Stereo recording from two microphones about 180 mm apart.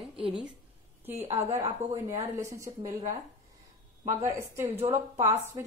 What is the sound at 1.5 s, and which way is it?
Speech, 20° right (ahead or behind).